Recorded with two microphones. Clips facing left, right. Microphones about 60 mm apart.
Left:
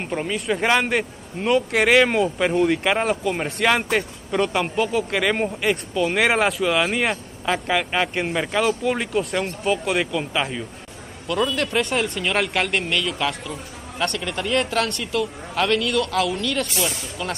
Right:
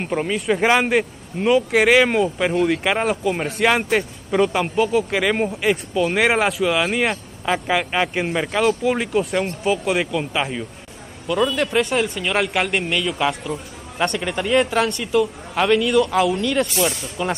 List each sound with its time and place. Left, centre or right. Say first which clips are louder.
0.0 s a man's voice: right 3 dB; centre